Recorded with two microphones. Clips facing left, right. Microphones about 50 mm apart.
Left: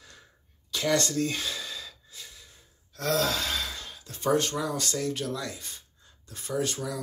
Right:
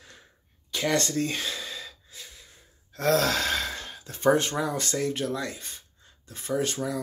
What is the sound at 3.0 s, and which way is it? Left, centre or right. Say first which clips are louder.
Gasp: right 4 dB; right.